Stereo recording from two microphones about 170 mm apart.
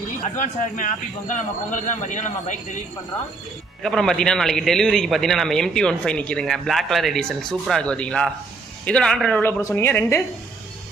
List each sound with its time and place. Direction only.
0.2 s speech: 45° left (ahead or behind)
3.8 s a man's voice: centre (ahead or behind)